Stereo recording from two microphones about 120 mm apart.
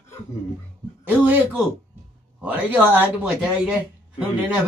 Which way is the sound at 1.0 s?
15° right (ahead or behind).